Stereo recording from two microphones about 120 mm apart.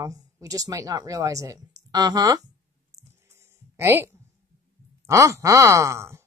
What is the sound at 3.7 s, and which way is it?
Speech, 20° right (ahead or behind).